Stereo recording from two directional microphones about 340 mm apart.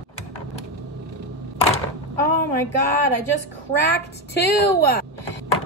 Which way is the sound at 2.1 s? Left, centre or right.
Right.